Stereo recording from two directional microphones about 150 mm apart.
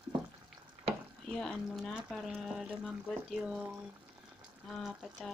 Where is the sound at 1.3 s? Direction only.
5° left (ahead or behind).